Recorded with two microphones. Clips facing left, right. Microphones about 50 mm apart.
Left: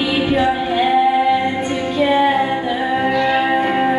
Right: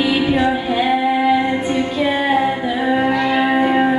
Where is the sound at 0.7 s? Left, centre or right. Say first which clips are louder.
Left 2 dB; centre.